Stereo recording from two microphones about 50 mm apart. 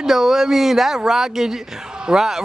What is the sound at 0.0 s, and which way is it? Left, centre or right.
Speech, centre.